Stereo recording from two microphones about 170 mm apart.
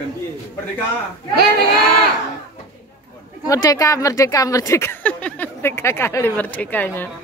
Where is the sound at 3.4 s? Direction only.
20° left (ahead or behind).